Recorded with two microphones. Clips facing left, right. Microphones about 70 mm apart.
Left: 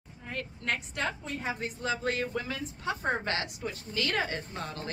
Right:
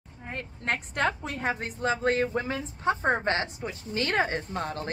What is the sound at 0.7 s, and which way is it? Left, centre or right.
A woman's voice, right.